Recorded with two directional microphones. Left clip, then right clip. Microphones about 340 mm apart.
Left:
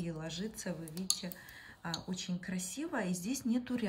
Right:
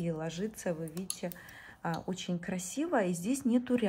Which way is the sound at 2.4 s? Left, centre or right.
Centre.